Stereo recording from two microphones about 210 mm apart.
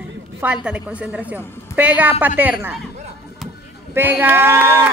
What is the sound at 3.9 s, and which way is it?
Speech, 10° right (ahead or behind).